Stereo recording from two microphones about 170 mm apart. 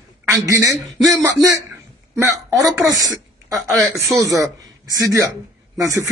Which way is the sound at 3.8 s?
Centre (ahead or behind).